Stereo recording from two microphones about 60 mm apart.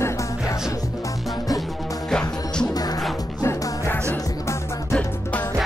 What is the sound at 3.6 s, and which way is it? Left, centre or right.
Music, left.